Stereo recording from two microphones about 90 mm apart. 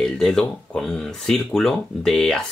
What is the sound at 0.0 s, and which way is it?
Speech, 5° left (ahead or behind).